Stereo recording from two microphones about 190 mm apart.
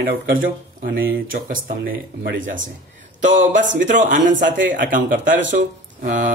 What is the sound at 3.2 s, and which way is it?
A man's voice, 40° right (ahead or behind).